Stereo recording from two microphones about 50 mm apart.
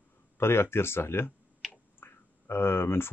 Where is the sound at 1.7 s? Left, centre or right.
Left.